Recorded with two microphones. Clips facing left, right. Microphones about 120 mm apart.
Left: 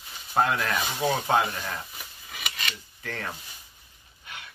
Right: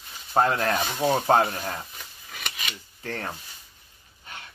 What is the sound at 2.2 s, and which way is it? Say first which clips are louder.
Scissors: left 1 dB; 5° left (ahead or behind).